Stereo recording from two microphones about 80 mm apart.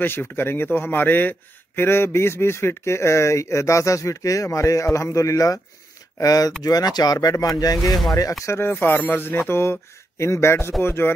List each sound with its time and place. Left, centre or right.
0.0 s a man's voice: left
8.5 s a man's voice: left